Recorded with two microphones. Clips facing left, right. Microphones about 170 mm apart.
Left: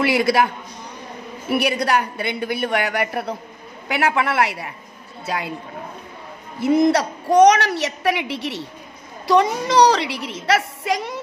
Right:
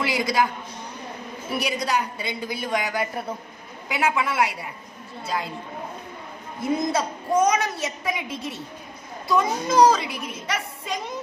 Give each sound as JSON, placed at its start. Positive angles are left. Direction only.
{"t": 0.0, "sound": "a woman's voice", "side_deg": 65}
{"t": 1.5, "sound": "a woman's voice", "side_deg": 65}
{"t": 3.9, "sound": "a woman's voice", "side_deg": 65}
{"t": 6.6, "sound": "a woman's voice", "side_deg": 75}